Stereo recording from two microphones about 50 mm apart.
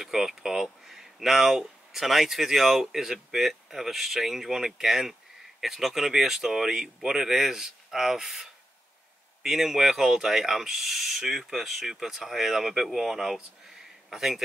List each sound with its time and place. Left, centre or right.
0.0 s speech: centre